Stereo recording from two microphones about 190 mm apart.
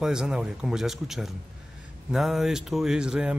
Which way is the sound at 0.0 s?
5° right (ahead or behind).